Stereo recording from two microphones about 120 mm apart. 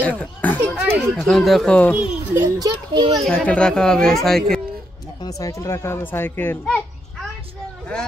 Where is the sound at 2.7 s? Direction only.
50° right (ahead or behind).